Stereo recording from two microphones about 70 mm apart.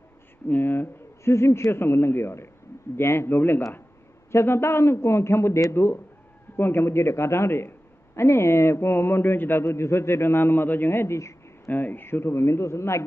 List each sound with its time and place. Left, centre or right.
0.5 s a man's voice: left
11.7 s a man's voice: left